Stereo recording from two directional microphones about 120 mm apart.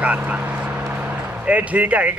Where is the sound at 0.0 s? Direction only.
10° right (ahead or behind).